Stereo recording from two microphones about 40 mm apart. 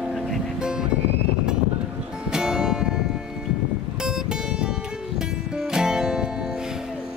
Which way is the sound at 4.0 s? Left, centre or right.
Centre.